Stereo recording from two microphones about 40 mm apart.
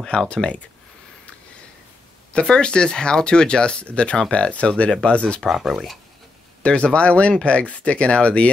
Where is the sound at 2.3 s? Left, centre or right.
Left.